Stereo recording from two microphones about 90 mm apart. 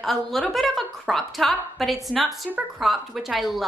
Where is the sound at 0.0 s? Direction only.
Centre (ahead or behind).